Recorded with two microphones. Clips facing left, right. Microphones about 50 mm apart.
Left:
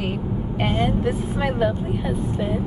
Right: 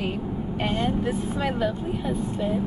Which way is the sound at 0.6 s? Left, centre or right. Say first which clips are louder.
Left 4 dB; left.